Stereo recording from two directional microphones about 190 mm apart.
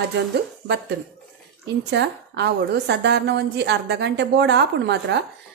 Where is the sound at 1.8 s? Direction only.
65° right (ahead or behind).